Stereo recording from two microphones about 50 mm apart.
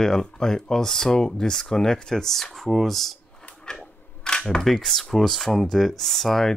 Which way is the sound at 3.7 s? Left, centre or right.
Centre.